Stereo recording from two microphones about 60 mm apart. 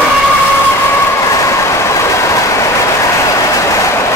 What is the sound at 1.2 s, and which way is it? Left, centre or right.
Train, left.